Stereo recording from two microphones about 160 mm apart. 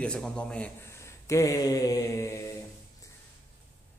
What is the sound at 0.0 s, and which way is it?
Speech, 5° left (ahead or behind).